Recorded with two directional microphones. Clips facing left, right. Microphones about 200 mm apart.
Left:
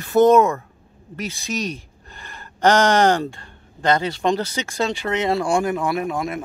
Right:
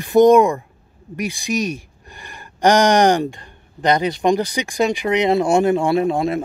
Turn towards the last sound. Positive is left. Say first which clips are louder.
# right 6 dB
turn(degrees=-30)  # may be behind; listen again after turning